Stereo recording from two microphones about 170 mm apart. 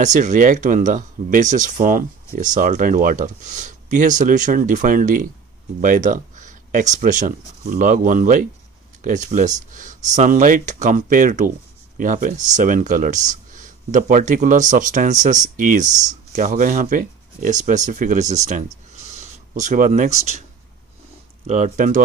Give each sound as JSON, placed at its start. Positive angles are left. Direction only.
{"t": 0.0, "sound": "speech", "side_deg": -45}
{"t": 18.9, "sound": "writing", "side_deg": -40}
{"t": 21.5, "sound": "speech", "side_deg": -40}